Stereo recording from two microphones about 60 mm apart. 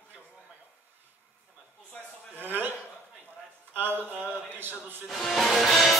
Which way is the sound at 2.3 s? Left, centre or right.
Right.